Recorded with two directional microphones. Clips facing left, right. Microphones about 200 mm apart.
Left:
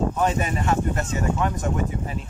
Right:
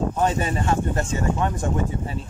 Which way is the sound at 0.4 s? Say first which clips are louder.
Right 1 dB; 30° right (ahead or behind).